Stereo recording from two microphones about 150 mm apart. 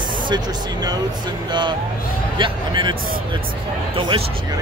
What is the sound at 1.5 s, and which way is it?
Speech, 30° right (ahead or behind).